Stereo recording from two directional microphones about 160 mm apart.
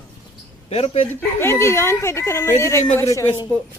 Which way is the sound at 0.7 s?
40° left (ahead or behind).